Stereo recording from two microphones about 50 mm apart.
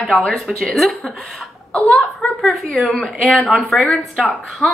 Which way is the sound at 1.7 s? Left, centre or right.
Left.